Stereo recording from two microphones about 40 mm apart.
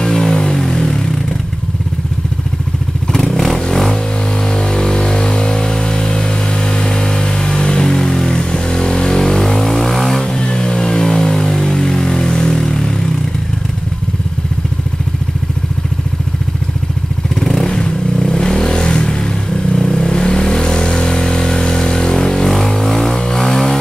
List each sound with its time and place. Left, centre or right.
0.0 s vehicle: centre
3.2 s vehicle: centre
10.2 s vehicle: left
17.4 s vehicle: centre